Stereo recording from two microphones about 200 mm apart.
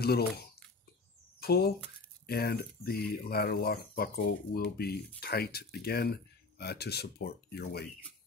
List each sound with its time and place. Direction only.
0.0 s speech: 50° left (ahead or behind)
1.4 s speech: 50° left (ahead or behind)